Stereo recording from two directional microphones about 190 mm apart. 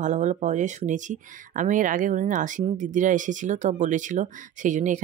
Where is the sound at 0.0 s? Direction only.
40° right (ahead or behind).